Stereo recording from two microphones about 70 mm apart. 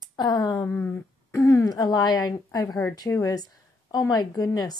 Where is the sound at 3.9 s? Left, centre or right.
Left.